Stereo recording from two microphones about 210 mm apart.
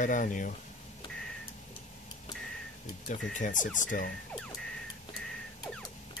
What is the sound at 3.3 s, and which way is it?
Speech, 40° left (ahead or behind).